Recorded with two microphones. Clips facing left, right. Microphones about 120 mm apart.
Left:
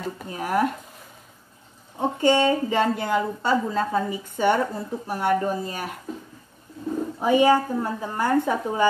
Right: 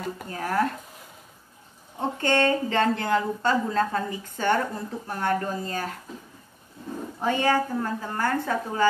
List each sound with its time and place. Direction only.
0.3 s a woman's voice: 15° left (ahead or behind)
2.0 s a woman's voice: 15° left (ahead or behind)
7.2 s a woman's voice: 15° left (ahead or behind)